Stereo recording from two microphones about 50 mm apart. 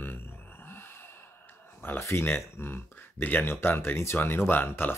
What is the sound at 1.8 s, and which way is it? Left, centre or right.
Speech, left.